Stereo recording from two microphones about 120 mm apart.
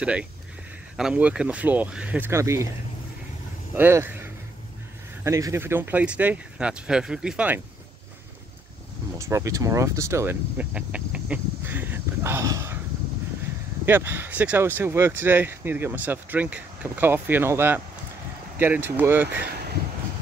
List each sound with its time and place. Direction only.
0.0 s speech: 10° right (ahead or behind)
3.7 s speech: 20° right (ahead or behind)
9.2 s speech: 25° right (ahead or behind)
10.6 s insect: 10° right (ahead or behind)
13.8 s speech: 15° right (ahead or behind)